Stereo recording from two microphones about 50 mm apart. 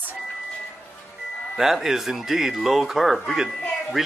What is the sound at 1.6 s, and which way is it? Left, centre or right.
Speech, centre.